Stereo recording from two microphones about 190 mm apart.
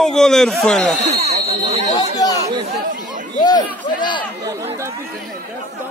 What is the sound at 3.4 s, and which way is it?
Speech, 20° left (ahead or behind).